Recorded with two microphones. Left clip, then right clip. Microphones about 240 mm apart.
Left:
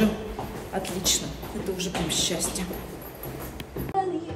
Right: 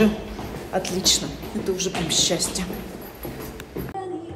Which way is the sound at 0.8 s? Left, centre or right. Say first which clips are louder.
Right 5 dB; centre.